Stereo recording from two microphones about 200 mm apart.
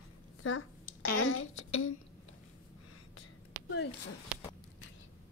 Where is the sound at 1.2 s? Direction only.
90° left.